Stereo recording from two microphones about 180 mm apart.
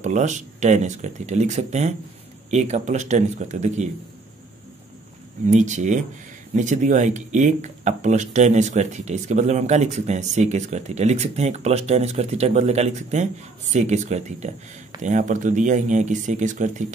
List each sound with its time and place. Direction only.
0.0 s speech: 40° right (ahead or behind)
5.5 s speech: 40° right (ahead or behind)